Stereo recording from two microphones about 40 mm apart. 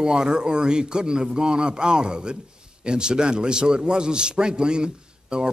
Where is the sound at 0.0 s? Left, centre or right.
Centre.